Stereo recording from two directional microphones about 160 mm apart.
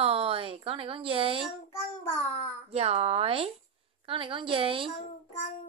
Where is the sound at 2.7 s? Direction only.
40° right (ahead or behind).